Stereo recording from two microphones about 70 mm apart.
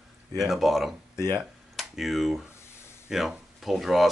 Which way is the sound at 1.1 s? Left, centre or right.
Left.